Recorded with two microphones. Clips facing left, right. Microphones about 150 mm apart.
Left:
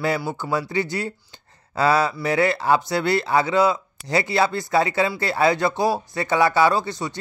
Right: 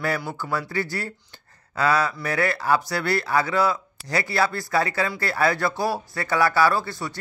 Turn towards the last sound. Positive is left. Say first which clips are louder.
# left 2 dB
turn(degrees=20)  # may be behind; listen again after turning